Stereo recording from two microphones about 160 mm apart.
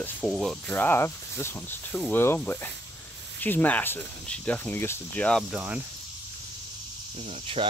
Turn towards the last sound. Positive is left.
turn(degrees=-35)  # may be behind; listen again after turning